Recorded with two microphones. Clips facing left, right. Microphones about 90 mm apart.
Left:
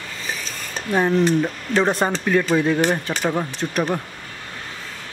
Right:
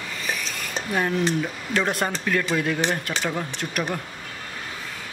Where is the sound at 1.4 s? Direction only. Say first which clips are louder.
Left 5 dB; 30° left (ahead or behind).